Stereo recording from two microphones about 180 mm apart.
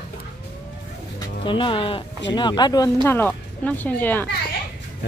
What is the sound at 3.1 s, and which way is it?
Speech, 10° left (ahead or behind).